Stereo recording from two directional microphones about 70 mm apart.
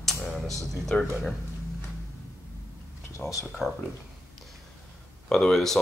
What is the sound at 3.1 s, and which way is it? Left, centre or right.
Speech, left.